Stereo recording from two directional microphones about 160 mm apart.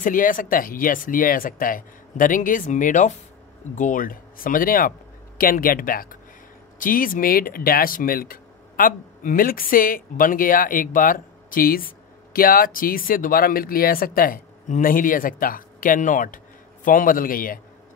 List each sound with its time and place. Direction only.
0.0 s speech: 60° left (ahead or behind)